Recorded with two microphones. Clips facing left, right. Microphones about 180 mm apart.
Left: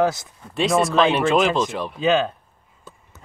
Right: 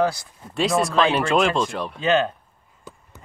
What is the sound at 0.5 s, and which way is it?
Speech, centre (ahead or behind).